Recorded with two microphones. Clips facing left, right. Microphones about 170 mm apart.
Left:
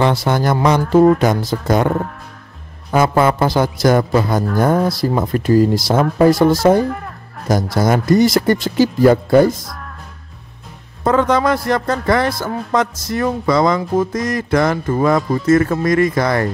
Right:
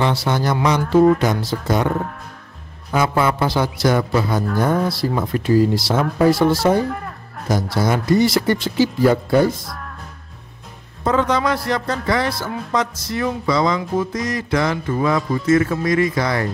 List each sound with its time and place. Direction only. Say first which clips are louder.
0.0 s a man's voice: left 4 dB; 50° left (ahead or behind)
2.9 s a man's voice: left 4 dB; 50° left (ahead or behind)
6.9 s music: left 2 dB; centre (ahead or behind)
7.7 s a man's voice: left 3 dB; 45° left (ahead or behind)
9.7 s music: even; centre (ahead or behind)
11.1 s a man's voice: left 4 dB; 50° left (ahead or behind)